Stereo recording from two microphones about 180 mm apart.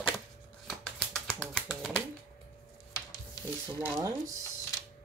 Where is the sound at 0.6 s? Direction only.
Centre (ahead or behind).